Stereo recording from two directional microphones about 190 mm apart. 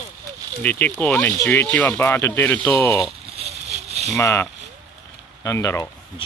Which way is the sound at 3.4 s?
35° right (ahead or behind).